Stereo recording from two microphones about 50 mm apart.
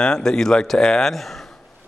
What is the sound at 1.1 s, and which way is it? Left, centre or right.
Speech, centre.